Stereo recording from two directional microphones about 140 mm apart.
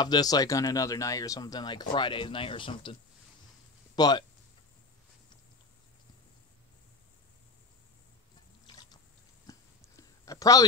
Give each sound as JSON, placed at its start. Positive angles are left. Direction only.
{"t": 0.0, "sound": "speech", "side_deg": 30}
{"t": 8.6, "sound": "water", "side_deg": 30}
{"t": 9.5, "sound": "a sound", "side_deg": 25}